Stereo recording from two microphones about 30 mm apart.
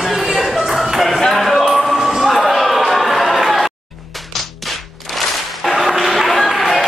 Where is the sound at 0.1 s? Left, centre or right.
Centre.